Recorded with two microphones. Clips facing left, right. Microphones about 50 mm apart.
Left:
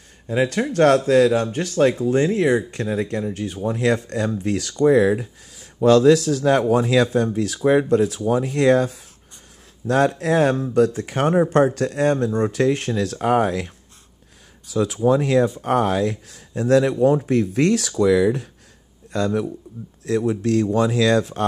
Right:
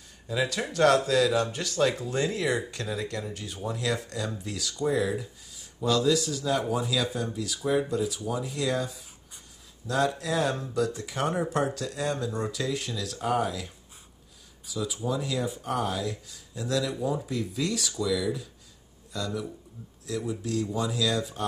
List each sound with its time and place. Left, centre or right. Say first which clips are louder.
0.3 s speech: left 8 dB; left
3.6 s speech: left 10 dB; left
4.4 s speech: left 12 dB; left
10.1 s speech: left 10 dB; left
14.7 s speech: left 12 dB; left